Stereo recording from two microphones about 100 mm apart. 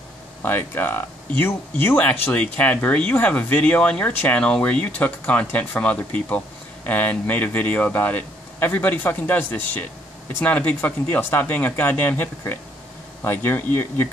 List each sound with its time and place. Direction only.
0.4 s speech: 20° left (ahead or behind)
2.0 s speech: 15° left (ahead or behind)